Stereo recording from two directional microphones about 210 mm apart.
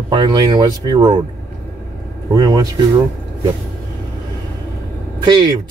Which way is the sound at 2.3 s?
20° right (ahead or behind).